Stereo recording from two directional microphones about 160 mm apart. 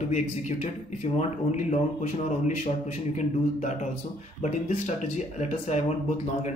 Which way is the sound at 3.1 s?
45° left (ahead or behind).